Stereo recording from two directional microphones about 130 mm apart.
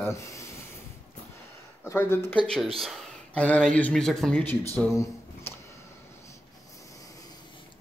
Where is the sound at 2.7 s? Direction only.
Centre (ahead or behind).